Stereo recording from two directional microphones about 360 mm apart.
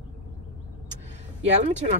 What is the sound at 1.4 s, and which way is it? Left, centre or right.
Speech, centre.